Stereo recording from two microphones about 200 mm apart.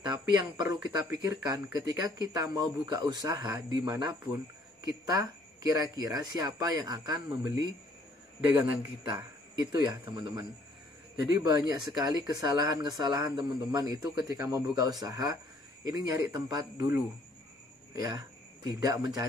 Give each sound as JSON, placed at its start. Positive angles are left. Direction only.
{"t": 0.2, "sound": "speech", "side_deg": -15}
{"t": 9.0, "sound": "speech", "side_deg": -20}
{"t": 18.0, "sound": "speech", "side_deg": -20}